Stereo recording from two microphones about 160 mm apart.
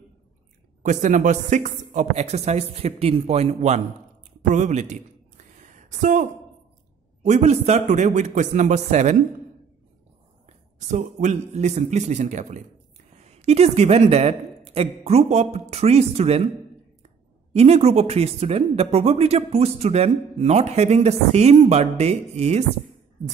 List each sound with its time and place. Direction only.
0.8 s speech: 50° right (ahead or behind)
5.6 s a sound: 50° right (ahead or behind)
7.2 s speech: 45° right (ahead or behind)
10.9 s speech: 50° right (ahead or behind)
17.5 s speech: 40° right (ahead or behind)